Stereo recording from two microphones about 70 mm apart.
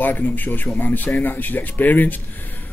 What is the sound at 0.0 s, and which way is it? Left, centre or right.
Speech, left.